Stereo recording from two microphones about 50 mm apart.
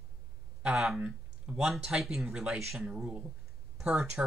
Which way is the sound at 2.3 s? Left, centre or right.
Right.